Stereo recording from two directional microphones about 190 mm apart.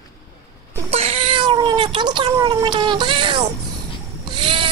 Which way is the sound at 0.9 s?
30° right (ahead or behind).